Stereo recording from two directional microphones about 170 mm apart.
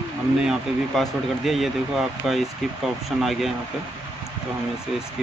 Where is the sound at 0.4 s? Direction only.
Centre (ahead or behind).